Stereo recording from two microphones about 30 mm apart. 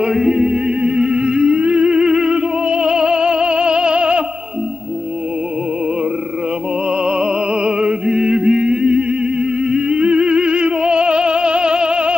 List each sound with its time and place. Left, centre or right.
0.1 s music: centre; by 4.2 s right
7.1 s music: right